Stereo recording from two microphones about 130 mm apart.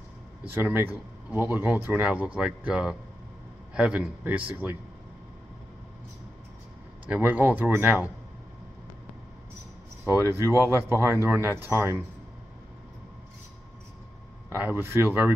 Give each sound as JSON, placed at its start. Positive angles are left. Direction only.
{"t": 0.5, "sound": "speech", "side_deg": -15}
{"t": 7.1, "sound": "speech", "side_deg": -10}
{"t": 10.0, "sound": "speech", "side_deg": -20}
{"t": 14.5, "sound": "speech", "side_deg": -15}